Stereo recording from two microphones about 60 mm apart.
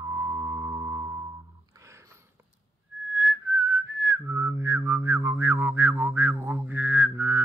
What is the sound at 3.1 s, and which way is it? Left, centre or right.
Whistling, right.